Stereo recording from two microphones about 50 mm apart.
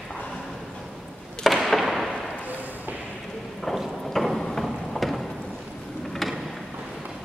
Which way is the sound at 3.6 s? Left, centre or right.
Centre.